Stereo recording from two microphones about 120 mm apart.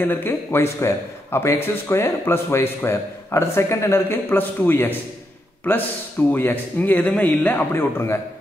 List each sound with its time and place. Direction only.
0.0 s a man's voice: 20° left (ahead or behind)
6.3 s speech: 15° left (ahead or behind)